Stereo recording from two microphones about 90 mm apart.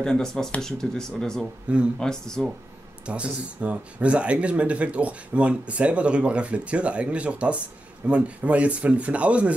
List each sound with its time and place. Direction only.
0.0 s speech: 5° left (ahead or behind)
3.1 s speech: 15° right (ahead or behind)